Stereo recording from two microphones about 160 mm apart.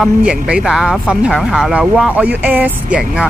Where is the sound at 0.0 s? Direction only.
5° right (ahead or behind).